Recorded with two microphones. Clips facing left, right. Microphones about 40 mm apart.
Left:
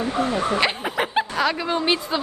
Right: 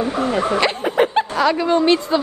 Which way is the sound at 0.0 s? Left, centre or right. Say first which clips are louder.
Right 3 dB; right.